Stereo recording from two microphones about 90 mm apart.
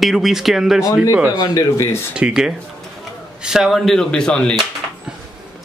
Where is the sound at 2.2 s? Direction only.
10° right (ahead or behind); by 4.6 s 10° left (ahead or behind).